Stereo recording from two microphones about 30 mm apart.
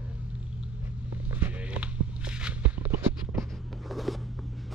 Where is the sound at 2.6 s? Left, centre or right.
Right.